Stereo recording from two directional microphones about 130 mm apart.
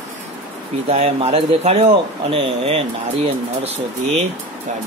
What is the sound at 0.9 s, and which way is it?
Speech, 55° right (ahead or behind).